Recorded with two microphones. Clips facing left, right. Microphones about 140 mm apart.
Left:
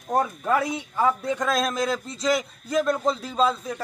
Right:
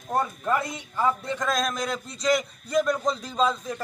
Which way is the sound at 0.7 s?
5° left (ahead or behind).